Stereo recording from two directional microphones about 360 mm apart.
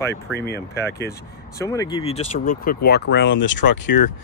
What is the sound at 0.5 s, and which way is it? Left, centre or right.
Speech, centre.